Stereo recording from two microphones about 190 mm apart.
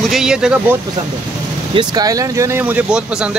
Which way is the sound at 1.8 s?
20° right (ahead or behind).